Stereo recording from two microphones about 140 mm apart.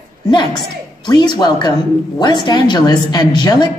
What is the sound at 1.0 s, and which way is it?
A woman's voice, 30° left (ahead or behind).